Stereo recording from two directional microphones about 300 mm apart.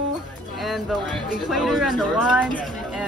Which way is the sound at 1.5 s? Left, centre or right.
Centre.